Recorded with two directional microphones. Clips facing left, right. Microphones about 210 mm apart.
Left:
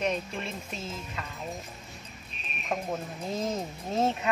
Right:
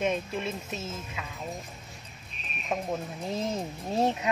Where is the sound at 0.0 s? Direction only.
5° right (ahead or behind).